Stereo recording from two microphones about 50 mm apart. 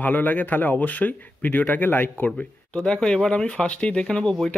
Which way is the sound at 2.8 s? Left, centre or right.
Centre.